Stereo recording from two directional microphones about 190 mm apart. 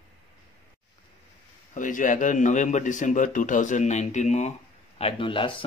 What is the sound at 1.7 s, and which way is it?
A man's voice, 45° left (ahead or behind).